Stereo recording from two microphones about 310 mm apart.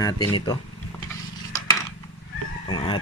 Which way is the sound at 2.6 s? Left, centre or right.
Centre.